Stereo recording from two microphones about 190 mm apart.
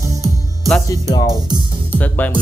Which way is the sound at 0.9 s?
15° left (ahead or behind).